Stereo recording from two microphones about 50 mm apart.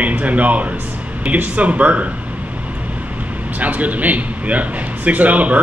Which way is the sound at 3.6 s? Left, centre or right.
Right.